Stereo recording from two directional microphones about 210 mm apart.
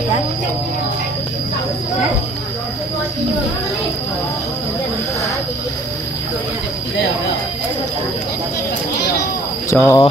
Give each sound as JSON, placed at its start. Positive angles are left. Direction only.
{"t": 9.7, "sound": "speech", "side_deg": 15}